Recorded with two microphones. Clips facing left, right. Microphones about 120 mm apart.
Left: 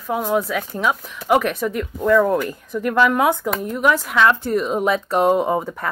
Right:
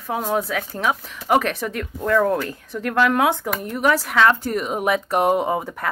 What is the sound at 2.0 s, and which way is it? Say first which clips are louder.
Speech: left 3 dB; 55° right (ahead or behind).